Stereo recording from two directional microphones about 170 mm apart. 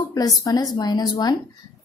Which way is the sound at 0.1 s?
20° left (ahead or behind).